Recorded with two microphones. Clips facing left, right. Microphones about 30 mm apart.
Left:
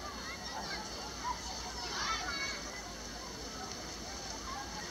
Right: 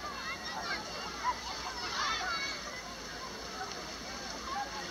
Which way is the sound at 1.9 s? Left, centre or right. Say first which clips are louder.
Right 3 dB; centre.